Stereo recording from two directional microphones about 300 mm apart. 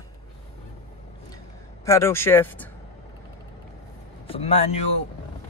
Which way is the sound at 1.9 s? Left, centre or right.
Centre.